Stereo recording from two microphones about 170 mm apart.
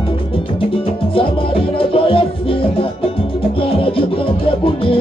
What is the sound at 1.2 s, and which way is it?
Music, 30° left (ahead or behind).